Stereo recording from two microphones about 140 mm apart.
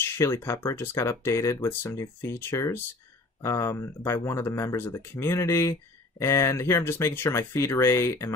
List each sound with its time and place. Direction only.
0.0 s speech: 20° left (ahead or behind)